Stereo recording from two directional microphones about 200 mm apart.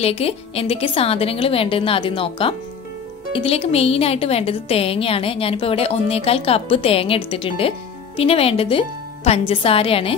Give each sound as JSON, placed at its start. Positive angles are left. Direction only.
{"t": 0.0, "sound": "a woman's voice", "side_deg": 30}